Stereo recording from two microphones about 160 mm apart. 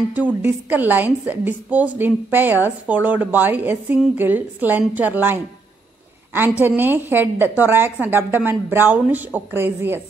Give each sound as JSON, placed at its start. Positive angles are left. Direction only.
{"t": 0.1, "sound": "a woman's voice", "side_deg": -10}
{"t": 6.6, "sound": "a woman's voice", "side_deg": -10}